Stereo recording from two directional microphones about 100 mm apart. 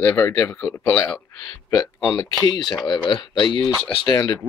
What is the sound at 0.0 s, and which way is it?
Speech, 25° left (ahead or behind).